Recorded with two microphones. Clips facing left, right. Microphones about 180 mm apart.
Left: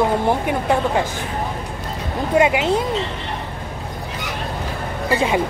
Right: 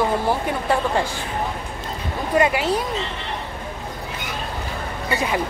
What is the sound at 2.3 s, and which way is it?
Speech, 20° left (ahead or behind).